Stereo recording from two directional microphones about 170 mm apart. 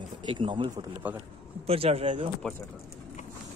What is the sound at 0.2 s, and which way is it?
Speech, 30° right (ahead or behind).